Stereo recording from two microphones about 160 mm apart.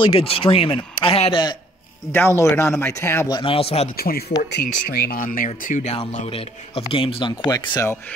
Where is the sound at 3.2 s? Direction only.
30° left (ahead or behind).